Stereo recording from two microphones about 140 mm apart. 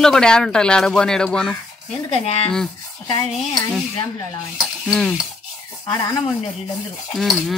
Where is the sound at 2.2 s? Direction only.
45° left (ahead or behind).